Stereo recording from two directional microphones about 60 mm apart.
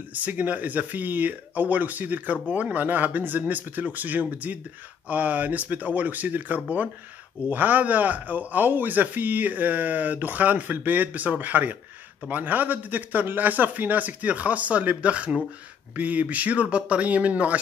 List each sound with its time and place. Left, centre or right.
0.1 s a man's voice: right